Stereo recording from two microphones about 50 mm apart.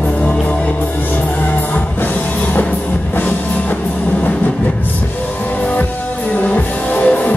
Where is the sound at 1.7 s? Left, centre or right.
Left.